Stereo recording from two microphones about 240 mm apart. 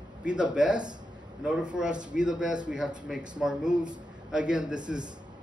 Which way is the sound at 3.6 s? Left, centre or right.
Centre.